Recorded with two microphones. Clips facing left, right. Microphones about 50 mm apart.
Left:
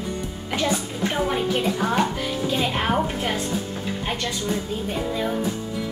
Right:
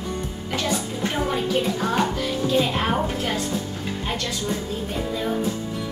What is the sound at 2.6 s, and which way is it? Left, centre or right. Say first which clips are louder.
Speech: even; centre.